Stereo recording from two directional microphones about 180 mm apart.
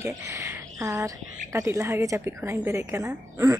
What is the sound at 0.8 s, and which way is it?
A woman's voice, 15° right (ahead or behind).